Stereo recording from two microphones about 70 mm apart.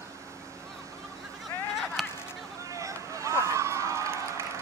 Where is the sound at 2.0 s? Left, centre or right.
Centre.